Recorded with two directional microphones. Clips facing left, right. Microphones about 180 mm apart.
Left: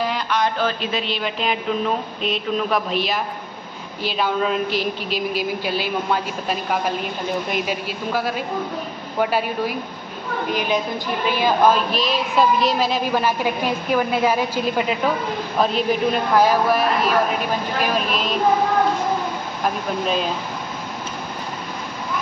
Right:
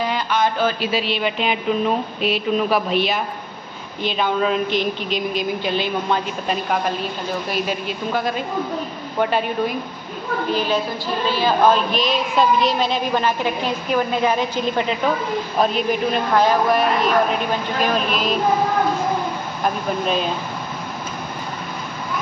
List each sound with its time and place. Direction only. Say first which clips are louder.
0.0 s a woman's voice: right 1 dB; centre (ahead or behind)
7.4 s a woman's voice: right 1 dB; 15° left (ahead or behind)
8.1 s a woman's voice: even; 5° left (ahead or behind)
11.7 s a woman's voice: right 1 dB; centre (ahead or behind)
19.6 s a woman's voice: right 1 dB; centre (ahead or behind)